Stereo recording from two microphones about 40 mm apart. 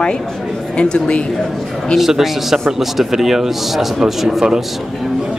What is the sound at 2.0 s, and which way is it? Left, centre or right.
A man's voice, centre.